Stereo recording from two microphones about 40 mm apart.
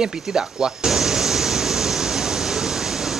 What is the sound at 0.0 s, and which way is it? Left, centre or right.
Speech, centre.